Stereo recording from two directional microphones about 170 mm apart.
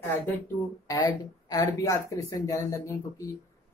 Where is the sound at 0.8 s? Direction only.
25° left (ahead or behind).